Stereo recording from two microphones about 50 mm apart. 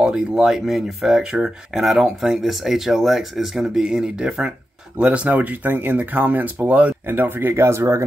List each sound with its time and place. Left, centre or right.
0.0 s speech: centre
4.9 s speech: right
7.1 s speech: right